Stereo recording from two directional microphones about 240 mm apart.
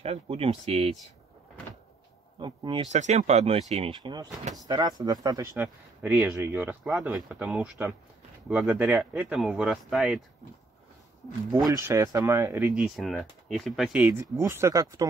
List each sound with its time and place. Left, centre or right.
0.0 s speech: right
2.4 s speech: centre
11.5 s speech: centre